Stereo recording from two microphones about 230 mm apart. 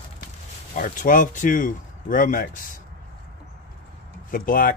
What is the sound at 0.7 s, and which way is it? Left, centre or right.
Speech, left.